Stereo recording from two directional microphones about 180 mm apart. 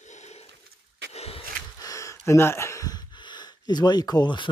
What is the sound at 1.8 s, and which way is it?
Gasp, 20° left (ahead or behind).